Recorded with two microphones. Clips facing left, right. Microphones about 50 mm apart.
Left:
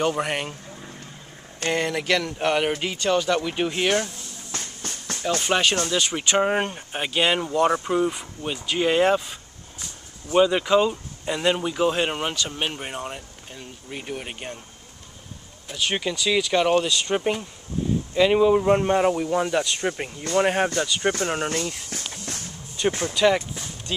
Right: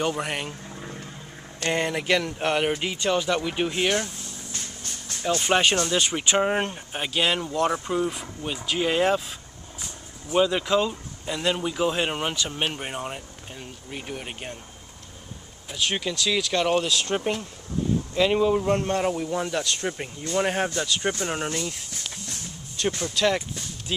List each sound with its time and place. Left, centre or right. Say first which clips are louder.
0.0 s speech: left 3 dB; centre
0.7 s vehicle: right 2 dB; centre
1.7 s speech: left 1 dB; centre
4.5 s a sound: left 5 dB; left
5.6 s speech: even; centre
6.1 s speech: left 3 dB; centre
13.8 s speech: left 2 dB; centre
15.7 s speech: left 1 dB; centre
21.9 s speech: left 3 dB; left
22.8 s speech: left 4 dB; left
23.1 s speech: left 4 dB; centre